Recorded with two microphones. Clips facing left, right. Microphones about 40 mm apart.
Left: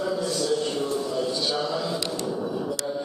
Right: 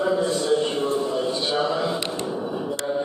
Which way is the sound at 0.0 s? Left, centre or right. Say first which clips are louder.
Right 4 dB; right.